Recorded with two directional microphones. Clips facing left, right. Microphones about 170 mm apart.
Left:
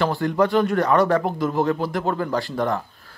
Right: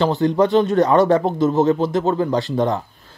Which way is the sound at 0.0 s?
25° right (ahead or behind).